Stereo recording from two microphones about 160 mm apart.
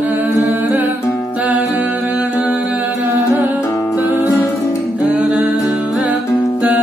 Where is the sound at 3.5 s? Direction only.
20° left (ahead or behind).